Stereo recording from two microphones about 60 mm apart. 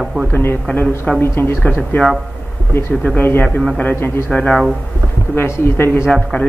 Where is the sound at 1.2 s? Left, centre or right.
Left.